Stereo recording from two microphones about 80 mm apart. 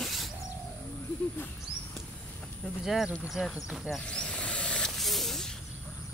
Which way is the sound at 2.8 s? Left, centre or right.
Centre.